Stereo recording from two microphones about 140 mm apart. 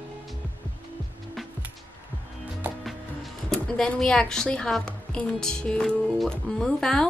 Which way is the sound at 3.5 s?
5° left (ahead or behind).